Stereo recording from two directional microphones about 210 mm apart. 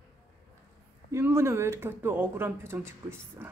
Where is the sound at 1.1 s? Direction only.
15° right (ahead or behind).